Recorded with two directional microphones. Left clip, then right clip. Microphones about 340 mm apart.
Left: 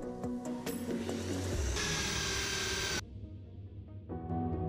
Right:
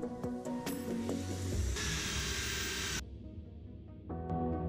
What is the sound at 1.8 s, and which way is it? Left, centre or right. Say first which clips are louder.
Vehicle: left 3 dB; centre.